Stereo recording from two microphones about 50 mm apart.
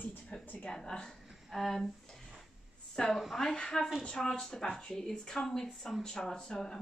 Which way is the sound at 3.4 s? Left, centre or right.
Centre.